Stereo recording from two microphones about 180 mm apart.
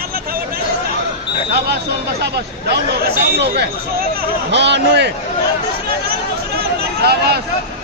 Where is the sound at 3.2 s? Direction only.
65° right (ahead or behind).